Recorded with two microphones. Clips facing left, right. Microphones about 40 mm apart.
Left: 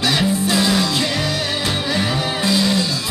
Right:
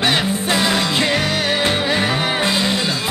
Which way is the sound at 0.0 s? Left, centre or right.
Right.